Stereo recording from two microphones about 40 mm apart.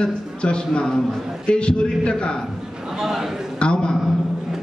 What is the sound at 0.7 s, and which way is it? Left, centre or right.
Speech, centre.